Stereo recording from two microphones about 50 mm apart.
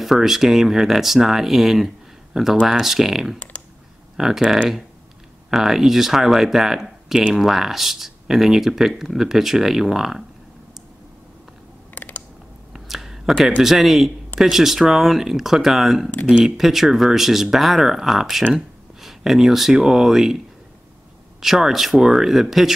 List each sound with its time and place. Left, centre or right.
0.0 s speech: centre
11.9 s mechanisms: left
12.7 s a sound: centre
13.6 s speech: centre
21.4 s speech: centre